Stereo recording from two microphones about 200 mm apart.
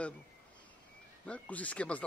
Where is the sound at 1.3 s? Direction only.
5° left (ahead or behind).